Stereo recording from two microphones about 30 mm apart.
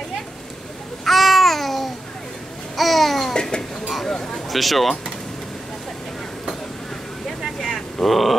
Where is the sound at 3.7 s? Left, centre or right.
Centre.